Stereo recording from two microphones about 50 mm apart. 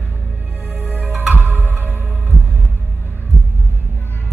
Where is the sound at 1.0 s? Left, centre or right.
Centre.